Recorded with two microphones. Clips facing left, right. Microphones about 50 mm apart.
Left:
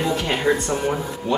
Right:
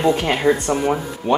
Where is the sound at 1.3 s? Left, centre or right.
Right.